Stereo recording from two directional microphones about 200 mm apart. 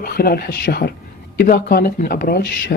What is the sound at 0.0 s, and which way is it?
Speech, 50° left (ahead or behind).